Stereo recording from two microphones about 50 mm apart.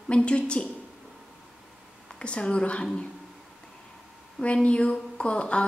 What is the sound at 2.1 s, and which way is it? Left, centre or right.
Speech, centre.